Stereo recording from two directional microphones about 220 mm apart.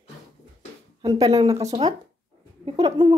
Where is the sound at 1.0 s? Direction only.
15° right (ahead or behind).